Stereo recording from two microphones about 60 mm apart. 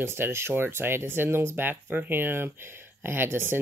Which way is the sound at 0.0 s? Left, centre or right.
Right.